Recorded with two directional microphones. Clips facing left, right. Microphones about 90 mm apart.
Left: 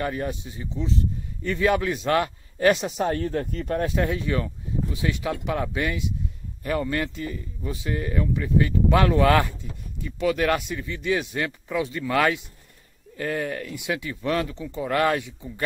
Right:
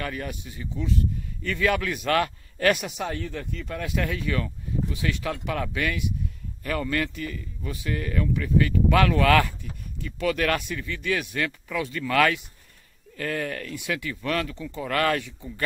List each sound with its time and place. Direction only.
0.0 s speech: 25° left (ahead or behind)
3.0 s speech: 40° left (ahead or behind); by 15.6 s 15° left (ahead or behind)